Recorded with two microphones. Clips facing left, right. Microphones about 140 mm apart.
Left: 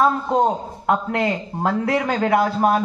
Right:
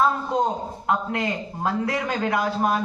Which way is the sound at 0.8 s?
55° left (ahead or behind).